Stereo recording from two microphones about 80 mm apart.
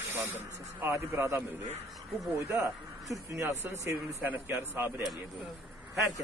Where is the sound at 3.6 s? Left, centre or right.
Right.